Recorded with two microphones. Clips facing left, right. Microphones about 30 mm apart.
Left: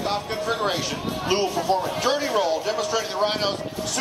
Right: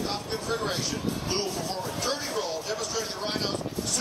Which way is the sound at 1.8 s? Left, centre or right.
Left.